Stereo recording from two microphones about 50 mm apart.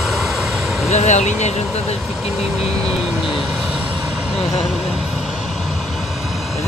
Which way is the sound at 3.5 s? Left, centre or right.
Right.